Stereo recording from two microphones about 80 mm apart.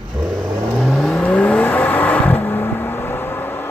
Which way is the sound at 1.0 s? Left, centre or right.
Centre.